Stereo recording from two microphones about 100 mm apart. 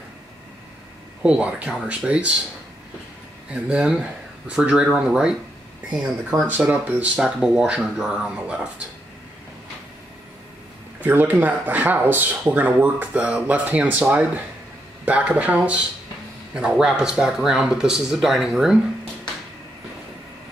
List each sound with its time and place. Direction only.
1.2 s speech: 10° right (ahead or behind)
3.5 s speech: 10° right (ahead or behind)
6.4 s speech: 15° right (ahead or behind)
11.0 s speech: 20° right (ahead or behind)